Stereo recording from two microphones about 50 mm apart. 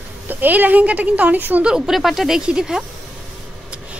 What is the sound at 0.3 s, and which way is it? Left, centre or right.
Speech, right.